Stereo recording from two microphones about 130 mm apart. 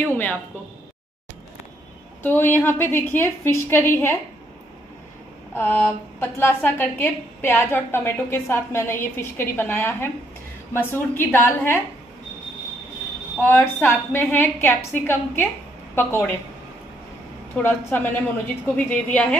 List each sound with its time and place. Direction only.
2.2 s a woman's voice: 15° left (ahead or behind)
5.5 s a woman's voice: 15° left (ahead or behind)
13.4 s a woman's voice: 15° left (ahead or behind)
17.6 s a woman's voice: 15° left (ahead or behind)